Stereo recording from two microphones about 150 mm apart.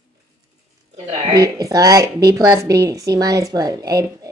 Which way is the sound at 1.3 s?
25° right (ahead or behind).